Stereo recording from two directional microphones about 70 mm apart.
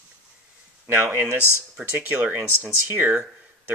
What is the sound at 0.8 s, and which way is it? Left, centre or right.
Speech, right.